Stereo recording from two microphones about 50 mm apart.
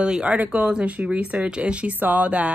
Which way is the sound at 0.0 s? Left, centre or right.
Right.